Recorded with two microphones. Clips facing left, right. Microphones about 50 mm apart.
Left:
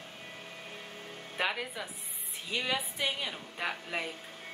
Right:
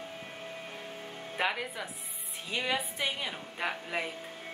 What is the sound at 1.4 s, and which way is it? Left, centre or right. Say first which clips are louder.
A woman's voice: right 1 dB; centre.